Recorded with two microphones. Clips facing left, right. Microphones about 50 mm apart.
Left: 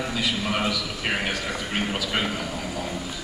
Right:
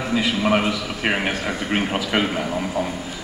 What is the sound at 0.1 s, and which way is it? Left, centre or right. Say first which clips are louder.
A man's voice: right 11 dB; right.